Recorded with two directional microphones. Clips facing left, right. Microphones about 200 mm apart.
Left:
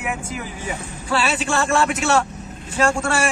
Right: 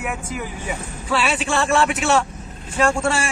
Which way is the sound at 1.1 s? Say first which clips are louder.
Even; centre (ahead or behind).